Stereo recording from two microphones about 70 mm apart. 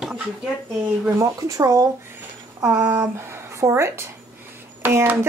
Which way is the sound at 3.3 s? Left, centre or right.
Right.